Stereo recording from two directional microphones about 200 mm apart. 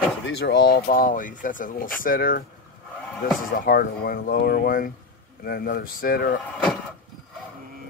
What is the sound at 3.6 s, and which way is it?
Speech, 50° left (ahead or behind).